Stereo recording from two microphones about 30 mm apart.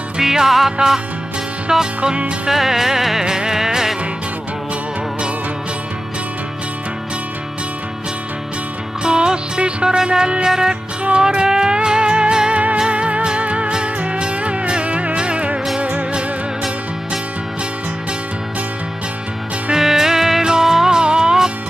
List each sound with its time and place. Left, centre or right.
0.2 s music: centre
0.7 s music: right
9.0 s music: right
11.4 s music: centre
11.7 s music: right
15.8 s music: right
19.8 s music: centre
21.0 s music: right